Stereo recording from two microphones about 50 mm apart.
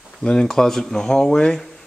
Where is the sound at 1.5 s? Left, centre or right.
Centre.